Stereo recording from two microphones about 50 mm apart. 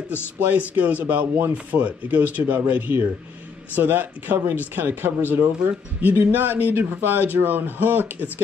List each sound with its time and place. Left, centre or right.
0.4 s speech: right